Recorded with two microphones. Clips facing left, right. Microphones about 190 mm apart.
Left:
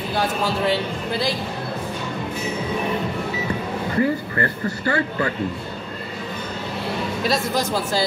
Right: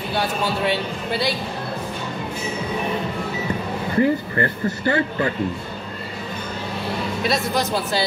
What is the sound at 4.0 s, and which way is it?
Speech, 25° right (ahead or behind).